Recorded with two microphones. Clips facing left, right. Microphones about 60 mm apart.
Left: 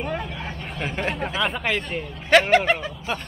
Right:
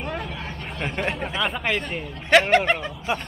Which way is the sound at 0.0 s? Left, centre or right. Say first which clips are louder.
Left 2 dB; centre.